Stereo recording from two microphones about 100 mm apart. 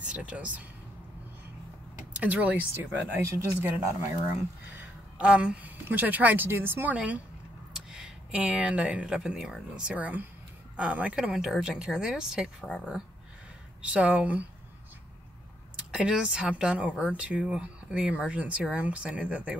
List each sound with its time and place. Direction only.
0.1 s speech: 10° right (ahead or behind)
2.1 s speech: 15° right (ahead or behind)
13.8 s speech: 15° right (ahead or behind)
15.7 s speech: 10° right (ahead or behind)